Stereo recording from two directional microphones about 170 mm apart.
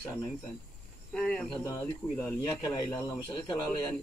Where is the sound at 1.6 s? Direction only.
20° left (ahead or behind).